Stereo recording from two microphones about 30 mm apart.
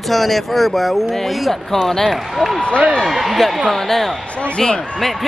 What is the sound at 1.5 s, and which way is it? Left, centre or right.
Speech, centre.